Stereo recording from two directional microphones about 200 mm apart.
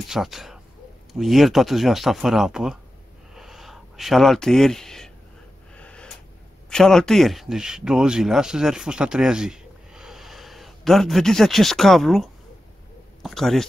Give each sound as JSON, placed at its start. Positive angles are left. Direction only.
{"t": 0.1, "sound": "speech", "side_deg": 0}
{"t": 3.3, "sound": "a sound", "side_deg": 0}
{"t": 6.7, "sound": "speech", "side_deg": 5}